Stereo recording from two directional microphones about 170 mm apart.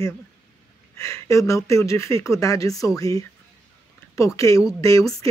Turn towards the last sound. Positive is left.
turn(degrees=20)  # may be behind; listen again after turning